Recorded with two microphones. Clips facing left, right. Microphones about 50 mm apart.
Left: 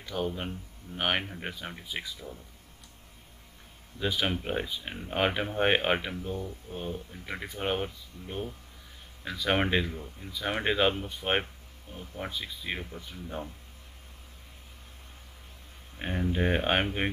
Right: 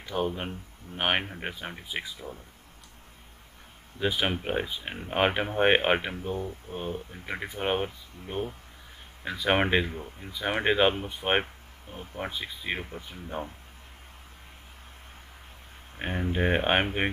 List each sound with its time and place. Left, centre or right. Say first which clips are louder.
0.0 s speech: right 3 dB; centre
4.0 s speech: right 2 dB; centre
16.0 s speech: right 1 dB; right